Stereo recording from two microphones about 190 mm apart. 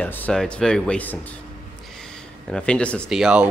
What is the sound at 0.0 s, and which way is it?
Speech, 10° left (ahead or behind).